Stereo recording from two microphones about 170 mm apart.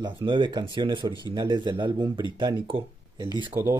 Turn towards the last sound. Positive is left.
turn(degrees=-15)  # may be behind; listen again after turning